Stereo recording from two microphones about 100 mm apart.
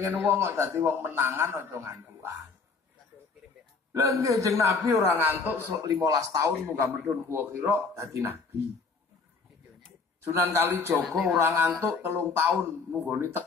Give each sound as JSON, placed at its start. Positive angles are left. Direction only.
{"t": 0.1, "sound": "a man's voice", "side_deg": -20}
{"t": 3.9, "sound": "a man's voice", "side_deg": -30}
{"t": 6.1, "sound": "a man's voice", "side_deg": -35}
{"t": 10.2, "sound": "a man's voice", "side_deg": -25}
{"t": 11.1, "sound": "speech", "side_deg": 0}
{"t": 11.3, "sound": "a man's voice", "side_deg": -25}